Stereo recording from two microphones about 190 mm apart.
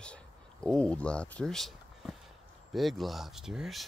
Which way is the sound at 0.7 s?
5° left (ahead or behind).